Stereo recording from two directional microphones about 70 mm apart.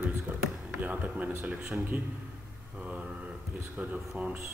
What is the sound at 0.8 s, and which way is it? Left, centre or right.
Speech, right.